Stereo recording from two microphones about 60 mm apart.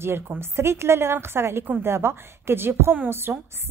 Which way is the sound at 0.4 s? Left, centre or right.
Right.